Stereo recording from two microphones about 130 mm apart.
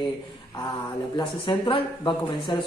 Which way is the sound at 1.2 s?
40° left (ahead or behind).